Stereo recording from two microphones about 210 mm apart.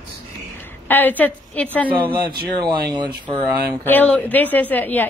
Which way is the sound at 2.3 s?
20° right (ahead or behind).